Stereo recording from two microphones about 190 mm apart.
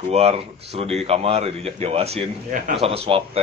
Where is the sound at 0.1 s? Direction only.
30° right (ahead or behind).